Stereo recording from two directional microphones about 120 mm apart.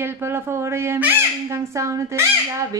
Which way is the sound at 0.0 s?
20° right (ahead or behind).